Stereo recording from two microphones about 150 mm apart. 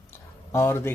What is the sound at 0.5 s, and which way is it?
Speech, 15° left (ahead or behind).